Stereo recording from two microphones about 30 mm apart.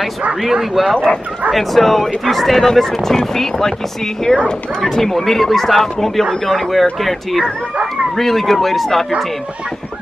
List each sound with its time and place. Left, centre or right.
0.4 s speech: centre